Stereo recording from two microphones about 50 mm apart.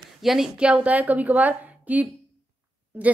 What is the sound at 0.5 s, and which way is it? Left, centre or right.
A woman's voice, right.